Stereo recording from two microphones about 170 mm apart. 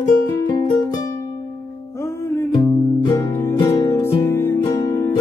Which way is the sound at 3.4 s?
15° left (ahead or behind).